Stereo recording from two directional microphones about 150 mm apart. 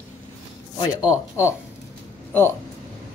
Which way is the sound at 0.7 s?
25° left (ahead or behind).